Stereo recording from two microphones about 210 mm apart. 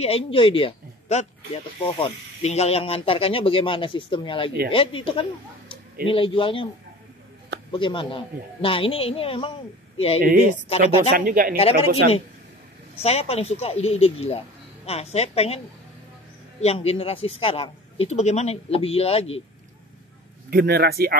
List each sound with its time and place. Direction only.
0.0 s speech: 25° left (ahead or behind)
7.7 s speech: 25° left (ahead or behind)
10.2 s speech: 35° right (ahead or behind)
11.5 s speech: 30° left (ahead or behind)
16.6 s speech: 30° left (ahead or behind)
20.4 s speech: 50° right (ahead or behind)